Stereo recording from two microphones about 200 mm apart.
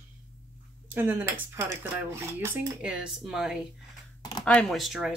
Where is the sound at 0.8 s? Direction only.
10° right (ahead or behind).